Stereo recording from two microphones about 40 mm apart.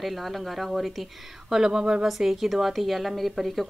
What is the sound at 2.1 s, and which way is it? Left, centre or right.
Speech, centre.